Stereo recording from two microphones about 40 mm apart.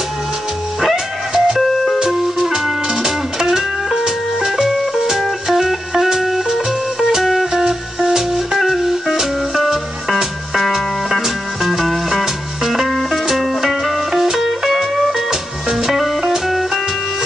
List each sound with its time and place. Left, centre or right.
0.7 s music: centre